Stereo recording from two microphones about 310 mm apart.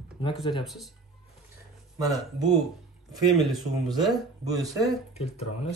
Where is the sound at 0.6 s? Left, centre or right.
Centre.